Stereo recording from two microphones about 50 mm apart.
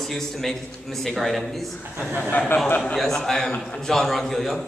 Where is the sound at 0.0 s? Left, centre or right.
Centre.